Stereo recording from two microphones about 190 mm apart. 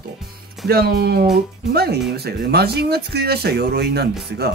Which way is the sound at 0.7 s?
55° right (ahead or behind).